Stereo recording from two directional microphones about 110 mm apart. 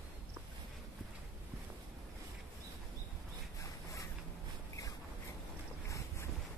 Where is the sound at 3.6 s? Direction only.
30° left (ahead or behind).